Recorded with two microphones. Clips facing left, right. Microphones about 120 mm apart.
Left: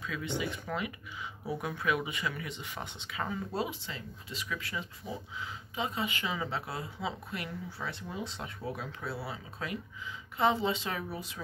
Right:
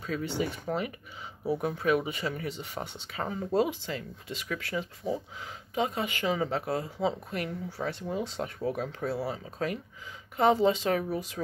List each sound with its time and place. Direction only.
0.0 s speech: 40° right (ahead or behind)
5.0 s speech: 25° right (ahead or behind)
5.4 s speech: 50° right (ahead or behind)